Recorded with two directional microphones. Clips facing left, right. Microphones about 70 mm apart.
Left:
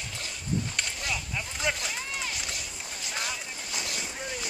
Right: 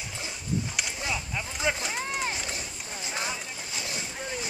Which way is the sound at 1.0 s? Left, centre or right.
Centre.